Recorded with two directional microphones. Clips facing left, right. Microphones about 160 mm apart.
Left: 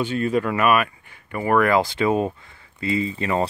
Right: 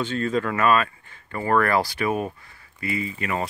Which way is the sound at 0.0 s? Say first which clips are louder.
Left 3 dB; 15° left (ahead or behind).